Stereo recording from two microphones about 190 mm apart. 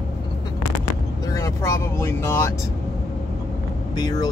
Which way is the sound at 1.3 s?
15° left (ahead or behind).